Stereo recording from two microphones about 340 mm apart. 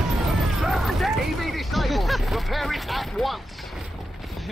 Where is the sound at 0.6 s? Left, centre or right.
Centre.